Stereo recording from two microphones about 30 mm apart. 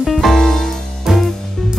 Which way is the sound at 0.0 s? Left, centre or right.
Centre.